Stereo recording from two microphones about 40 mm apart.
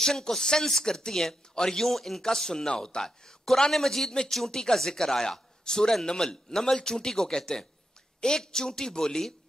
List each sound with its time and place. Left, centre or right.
0.0 s speech: centre